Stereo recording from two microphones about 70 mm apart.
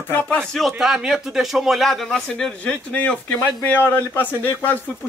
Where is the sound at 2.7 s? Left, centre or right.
Centre.